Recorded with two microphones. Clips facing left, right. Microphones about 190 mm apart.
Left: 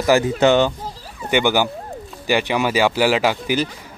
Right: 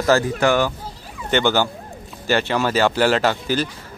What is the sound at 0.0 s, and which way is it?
A man's voice, 20° left (ahead or behind).